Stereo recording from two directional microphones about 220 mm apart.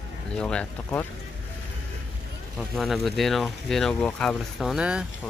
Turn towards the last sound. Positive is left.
turn(degrees=-5)  # may be behind; listen again after turning